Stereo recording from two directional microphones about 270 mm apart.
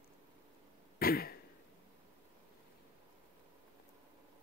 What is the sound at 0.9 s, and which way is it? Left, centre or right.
Throat clearing, left.